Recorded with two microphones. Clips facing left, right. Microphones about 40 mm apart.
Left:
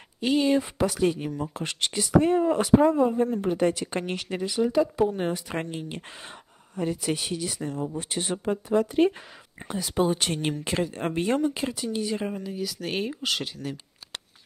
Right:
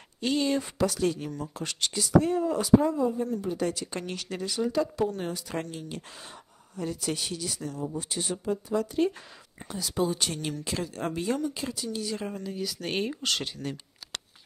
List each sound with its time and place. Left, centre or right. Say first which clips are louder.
0.2 s speech: left 4 dB; centre; by 3.5 s left
3.5 s speech: left 6 dB; left; by 12.5 s centre
12.5 s speech: right 1 dB; centre